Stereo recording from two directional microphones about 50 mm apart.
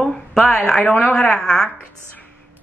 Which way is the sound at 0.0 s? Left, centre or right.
Centre.